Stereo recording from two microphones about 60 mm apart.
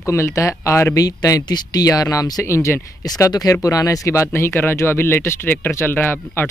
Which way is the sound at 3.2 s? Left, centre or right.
Left.